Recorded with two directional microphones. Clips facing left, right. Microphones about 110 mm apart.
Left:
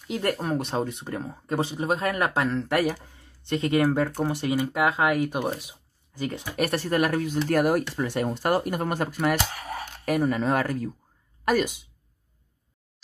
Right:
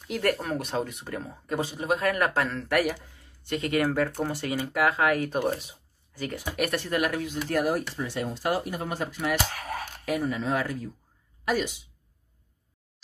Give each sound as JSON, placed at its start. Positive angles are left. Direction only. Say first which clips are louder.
{"t": 0.1, "sound": "speech", "louder": "left 1 dB", "side_deg": 25}
{"t": 2.6, "sound": "speech", "louder": "left 1 dB", "side_deg": 30}
{"t": 5.6, "sound": "a sound", "louder": "left 1 dB", "side_deg": 15}
{"t": 6.2, "sound": "speech", "louder": "left 2 dB", "side_deg": 30}
{"t": 7.4, "sound": "speech", "louder": "left 3 dB", "side_deg": 55}
{"t": 9.5, "sound": "speech", "louder": "even", "side_deg": 5}
{"t": 10.0, "sound": "speech", "louder": "left 5 dB", "side_deg": 50}